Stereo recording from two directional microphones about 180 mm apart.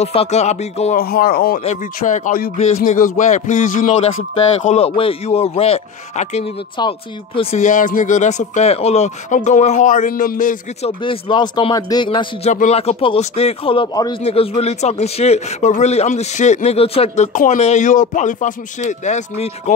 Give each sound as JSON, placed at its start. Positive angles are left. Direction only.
{"t": 0.0, "sound": "a man's voice", "side_deg": 35}
{"t": 0.9, "sound": "speech", "side_deg": 55}
{"t": 1.6, "sound": "a man's voice", "side_deg": 45}
{"t": 7.6, "sound": "speech", "side_deg": 45}
{"t": 11.0, "sound": "speech", "side_deg": 25}
{"t": 12.4, "sound": "a man's voice", "side_deg": 40}